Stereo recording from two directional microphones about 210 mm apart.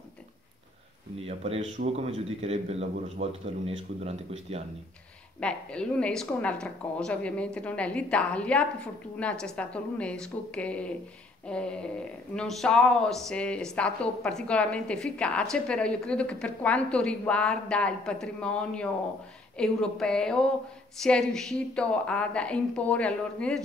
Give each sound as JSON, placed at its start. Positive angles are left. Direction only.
{"t": 1.2, "sound": "a man's voice", "side_deg": -30}
{"t": 5.4, "sound": "a woman's voice", "side_deg": 5}